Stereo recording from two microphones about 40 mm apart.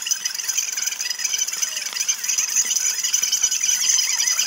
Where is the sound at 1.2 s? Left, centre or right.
Centre.